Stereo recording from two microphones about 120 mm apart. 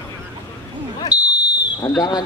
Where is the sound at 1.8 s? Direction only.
30° left (ahead or behind).